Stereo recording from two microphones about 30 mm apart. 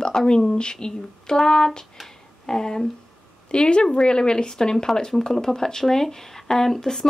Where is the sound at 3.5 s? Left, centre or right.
Left.